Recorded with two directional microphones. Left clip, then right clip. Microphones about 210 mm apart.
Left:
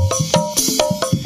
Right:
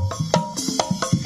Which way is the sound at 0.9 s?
35° left (ahead or behind).